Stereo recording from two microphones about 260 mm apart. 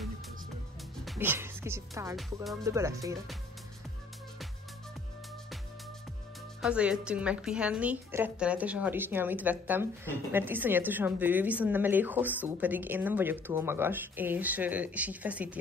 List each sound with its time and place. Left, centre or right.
1.0 s a woman's voice: centre
6.6 s a woman's voice: centre